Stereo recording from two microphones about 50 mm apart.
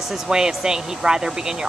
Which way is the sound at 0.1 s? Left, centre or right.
Centre.